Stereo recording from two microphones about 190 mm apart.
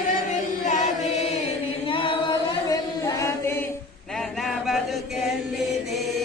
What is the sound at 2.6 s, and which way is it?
Chant, 15° left (ahead or behind).